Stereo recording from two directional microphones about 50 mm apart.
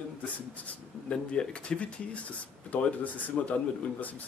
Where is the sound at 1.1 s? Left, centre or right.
Left.